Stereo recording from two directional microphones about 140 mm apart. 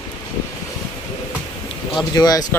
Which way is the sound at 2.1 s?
25° left (ahead or behind).